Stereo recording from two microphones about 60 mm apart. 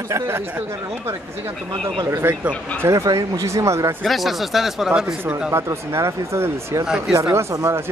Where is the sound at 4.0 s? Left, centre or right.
Centre.